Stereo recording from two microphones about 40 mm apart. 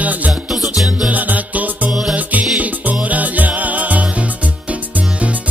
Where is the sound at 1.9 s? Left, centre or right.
Centre.